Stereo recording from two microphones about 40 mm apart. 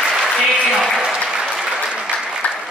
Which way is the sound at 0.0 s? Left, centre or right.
Centre.